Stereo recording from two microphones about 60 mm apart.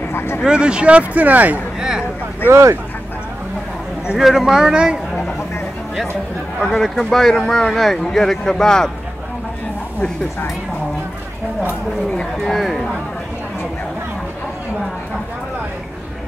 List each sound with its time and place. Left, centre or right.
0.4 s speech: centre
1.8 s a sound: centre
2.5 s speech: right
4.2 s speech: centre
6.6 s speech: centre
12.4 s speech: centre